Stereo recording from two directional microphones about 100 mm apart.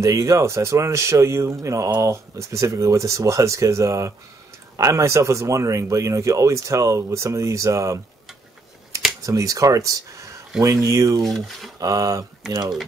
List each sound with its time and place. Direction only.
0.0 s speech: 30° right (ahead or behind)
9.2 s speech: 35° right (ahead or behind)
11.2 s speech: centre (ahead or behind)
11.8 s speech: 35° right (ahead or behind)